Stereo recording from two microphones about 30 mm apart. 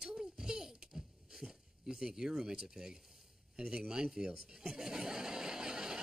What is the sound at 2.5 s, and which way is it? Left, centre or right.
Speech, centre.